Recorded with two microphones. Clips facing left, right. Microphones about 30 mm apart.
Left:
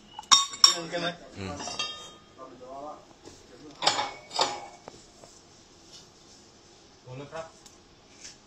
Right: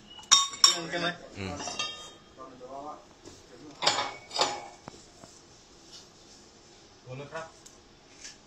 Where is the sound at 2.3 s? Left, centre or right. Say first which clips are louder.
Even; centre.